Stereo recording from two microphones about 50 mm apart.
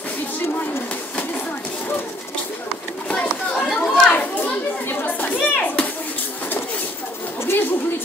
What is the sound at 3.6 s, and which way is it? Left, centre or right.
Chatter, centre.